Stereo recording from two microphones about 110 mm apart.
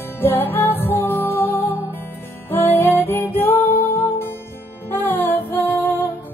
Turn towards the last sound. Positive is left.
turn(degrees=15)  # may be behind; listen again after turning